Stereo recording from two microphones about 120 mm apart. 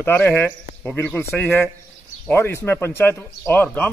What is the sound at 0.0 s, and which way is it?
Speech, 15° left (ahead or behind).